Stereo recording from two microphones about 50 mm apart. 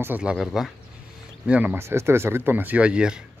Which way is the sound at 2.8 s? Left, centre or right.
Centre.